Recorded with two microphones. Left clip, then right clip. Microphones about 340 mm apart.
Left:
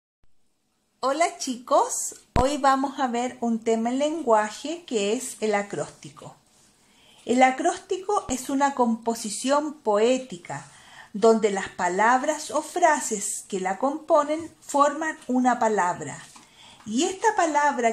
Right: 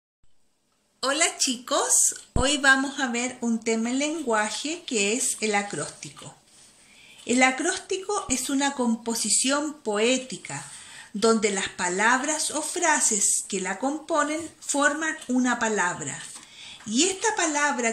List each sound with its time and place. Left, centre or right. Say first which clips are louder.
1.0 s a woman's voice: left 1 dB; centre
7.2 s a woman's voice: left 2 dB; left